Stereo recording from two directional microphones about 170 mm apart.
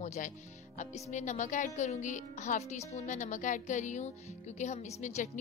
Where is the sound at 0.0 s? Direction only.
45° left (ahead or behind).